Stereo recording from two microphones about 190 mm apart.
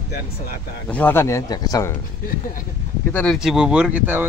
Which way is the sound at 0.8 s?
10° left (ahead or behind).